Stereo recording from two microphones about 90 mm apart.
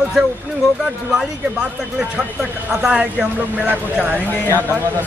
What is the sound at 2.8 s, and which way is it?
A man's voice, 10° right (ahead or behind).